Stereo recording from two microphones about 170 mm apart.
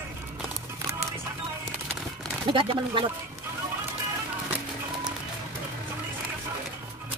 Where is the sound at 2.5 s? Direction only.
30° right (ahead or behind).